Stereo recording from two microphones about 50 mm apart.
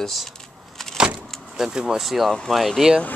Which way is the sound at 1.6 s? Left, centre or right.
Centre.